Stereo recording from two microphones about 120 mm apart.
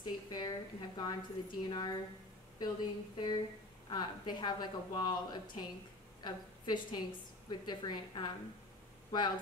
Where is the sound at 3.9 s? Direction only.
35° left (ahead or behind).